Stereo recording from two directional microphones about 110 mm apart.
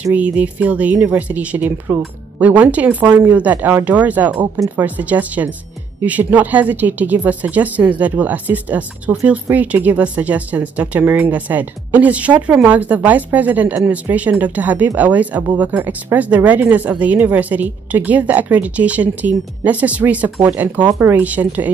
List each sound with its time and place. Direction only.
0.0 s speech: 15° right (ahead or behind)